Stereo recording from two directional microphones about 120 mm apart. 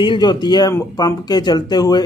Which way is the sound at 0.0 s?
40° left (ahead or behind).